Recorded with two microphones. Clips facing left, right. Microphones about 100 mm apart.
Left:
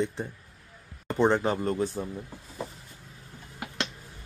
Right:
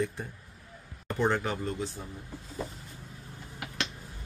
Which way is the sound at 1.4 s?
50° left (ahead or behind).